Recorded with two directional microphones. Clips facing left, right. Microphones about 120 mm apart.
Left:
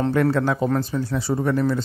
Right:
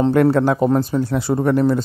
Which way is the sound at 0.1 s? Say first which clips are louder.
Right 5 dB; 50° right (ahead or behind).